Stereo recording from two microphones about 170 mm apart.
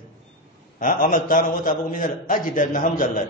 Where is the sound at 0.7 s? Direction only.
55° left (ahead or behind).